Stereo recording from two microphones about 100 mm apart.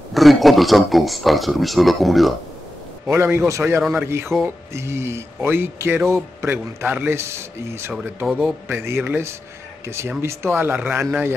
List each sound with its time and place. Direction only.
0.1 s speech: centre (ahead or behind)
3.1 s speech: 25° right (ahead or behind)